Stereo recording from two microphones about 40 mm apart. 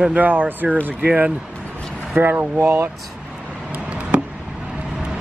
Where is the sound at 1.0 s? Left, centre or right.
Right.